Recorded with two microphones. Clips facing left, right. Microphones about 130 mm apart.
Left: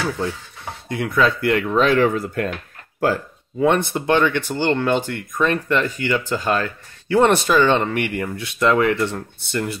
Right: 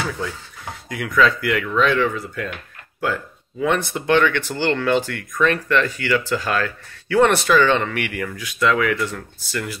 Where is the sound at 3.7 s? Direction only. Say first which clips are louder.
Left 2 dB; 20° left (ahead or behind).